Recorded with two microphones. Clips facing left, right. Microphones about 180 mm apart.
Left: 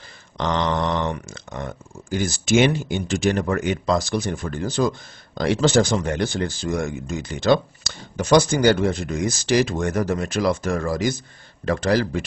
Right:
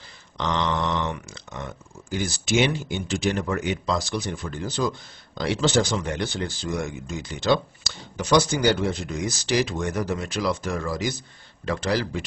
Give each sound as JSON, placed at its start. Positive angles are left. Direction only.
{"t": 0.4, "sound": "speech", "side_deg": 50}